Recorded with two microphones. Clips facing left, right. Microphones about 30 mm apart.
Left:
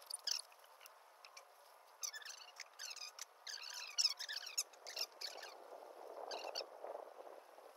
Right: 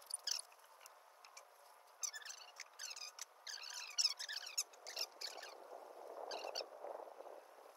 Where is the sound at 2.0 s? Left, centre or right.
Centre.